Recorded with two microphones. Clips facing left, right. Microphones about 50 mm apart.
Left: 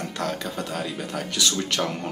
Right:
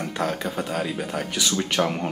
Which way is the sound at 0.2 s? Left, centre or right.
Centre.